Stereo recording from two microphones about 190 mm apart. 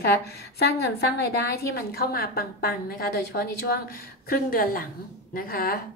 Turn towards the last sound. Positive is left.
turn(degrees=50)  # may be behind; listen again after turning